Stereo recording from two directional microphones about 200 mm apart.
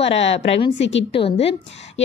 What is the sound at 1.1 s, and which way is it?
Speech, 30° left (ahead or behind).